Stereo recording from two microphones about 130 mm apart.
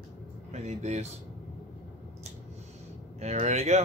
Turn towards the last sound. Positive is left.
turn(degrees=-55)  # may be behind; listen again after turning